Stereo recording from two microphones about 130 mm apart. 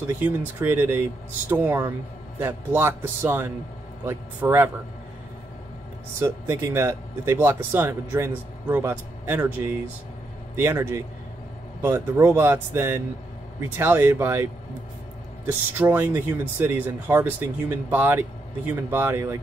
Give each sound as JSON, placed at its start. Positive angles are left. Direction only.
{"t": 0.2, "sound": "speech", "side_deg": -15}
{"t": 6.1, "sound": "speech", "side_deg": -20}